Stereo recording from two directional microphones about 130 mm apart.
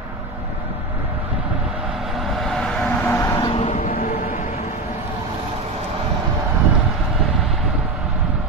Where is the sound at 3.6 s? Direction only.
65° left (ahead or behind); by 4.3 s 90° left.